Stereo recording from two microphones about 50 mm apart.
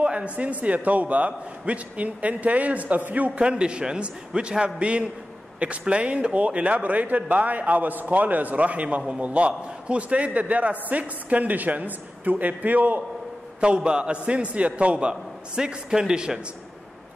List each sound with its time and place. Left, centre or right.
0.0 s a man's voice: right
13.6 s a man's voice: centre